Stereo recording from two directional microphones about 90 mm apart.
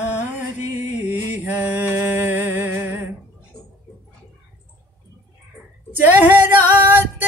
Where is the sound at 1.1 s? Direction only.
20° right (ahead or behind).